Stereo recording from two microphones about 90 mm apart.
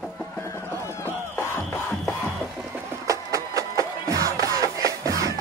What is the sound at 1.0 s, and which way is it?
Music, 30° left (ahead or behind).